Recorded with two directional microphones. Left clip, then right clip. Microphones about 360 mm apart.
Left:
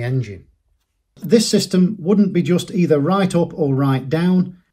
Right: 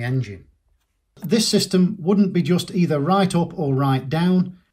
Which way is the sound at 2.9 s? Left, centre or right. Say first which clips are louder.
Left 3 dB; centre.